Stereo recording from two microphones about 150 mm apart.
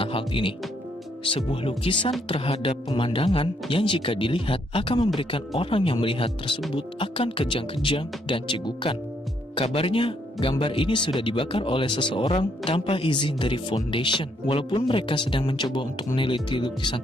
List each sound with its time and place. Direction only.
0.0 s music: 35° left (ahead or behind)
1.2 s speech: 35° left (ahead or behind)